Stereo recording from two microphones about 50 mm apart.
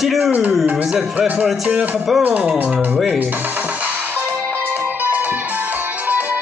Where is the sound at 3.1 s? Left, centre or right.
Right.